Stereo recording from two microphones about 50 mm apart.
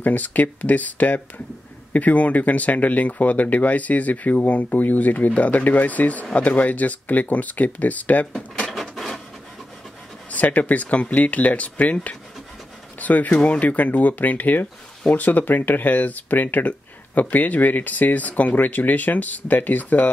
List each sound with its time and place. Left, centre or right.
0.0 s speech: left
8.9 s a sound: centre
10.3 s speech: left